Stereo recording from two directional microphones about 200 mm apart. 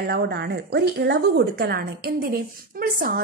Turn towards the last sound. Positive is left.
turn(degrees=-45)  # may be behind; listen again after turning